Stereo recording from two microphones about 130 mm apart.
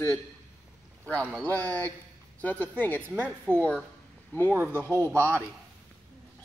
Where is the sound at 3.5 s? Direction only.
15° right (ahead or behind).